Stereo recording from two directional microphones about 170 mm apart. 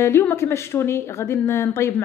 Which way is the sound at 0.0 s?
15° left (ahead or behind).